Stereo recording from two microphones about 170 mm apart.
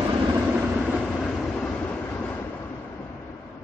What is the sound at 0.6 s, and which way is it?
Vehicle, centre (ahead or behind).